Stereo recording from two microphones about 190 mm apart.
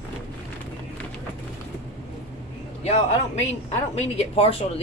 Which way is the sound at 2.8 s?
35° left (ahead or behind).